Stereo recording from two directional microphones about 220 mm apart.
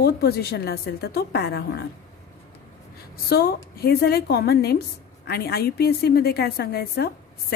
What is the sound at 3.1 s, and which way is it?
A woman's voice, 45° left (ahead or behind).